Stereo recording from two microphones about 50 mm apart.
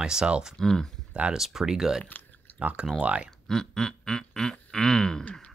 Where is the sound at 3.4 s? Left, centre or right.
Centre.